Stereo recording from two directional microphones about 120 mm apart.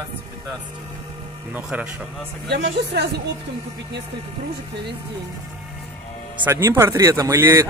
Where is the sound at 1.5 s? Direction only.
10° right (ahead or behind).